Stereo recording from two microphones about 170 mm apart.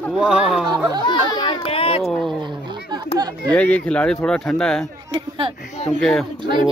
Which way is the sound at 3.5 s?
10° left (ahead or behind).